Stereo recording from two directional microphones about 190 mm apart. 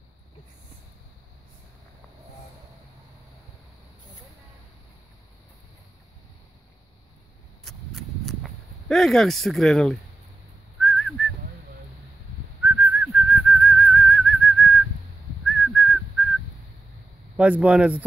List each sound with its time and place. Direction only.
7.6 s a sound: centre (ahead or behind)
10.8 s whistling: 5° left (ahead or behind)
12.6 s whistling: 5° right (ahead or behind)
17.4 s speech: 5° right (ahead or behind)